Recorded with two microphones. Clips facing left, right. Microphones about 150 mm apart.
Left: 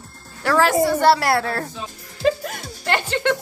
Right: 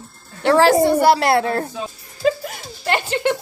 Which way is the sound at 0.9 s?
15° right (ahead or behind).